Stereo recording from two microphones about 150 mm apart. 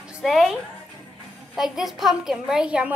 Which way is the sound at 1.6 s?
Centre (ahead or behind).